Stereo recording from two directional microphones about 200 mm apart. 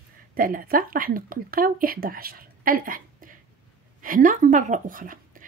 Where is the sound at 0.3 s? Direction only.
45° right (ahead or behind).